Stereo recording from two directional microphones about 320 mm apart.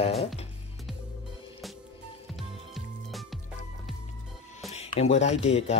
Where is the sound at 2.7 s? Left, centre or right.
Centre.